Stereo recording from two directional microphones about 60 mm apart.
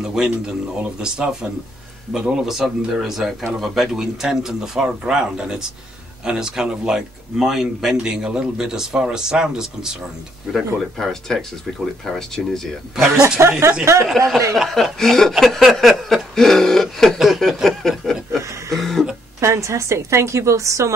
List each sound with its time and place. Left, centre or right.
0.0 s speech: centre
4.8 s speech: centre
10.5 s speech: centre
13.4 s speech: right
14.0 s speech: centre
19.4 s a woman's voice: right